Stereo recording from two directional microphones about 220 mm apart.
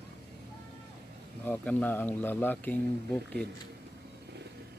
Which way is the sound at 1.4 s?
5° left (ahead or behind).